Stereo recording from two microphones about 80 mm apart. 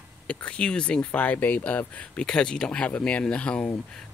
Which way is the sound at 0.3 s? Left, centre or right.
Centre.